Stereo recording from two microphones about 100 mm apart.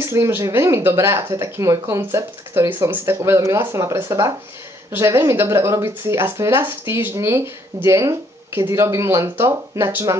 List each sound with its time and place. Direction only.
0.0 s speech: 25° right (ahead or behind)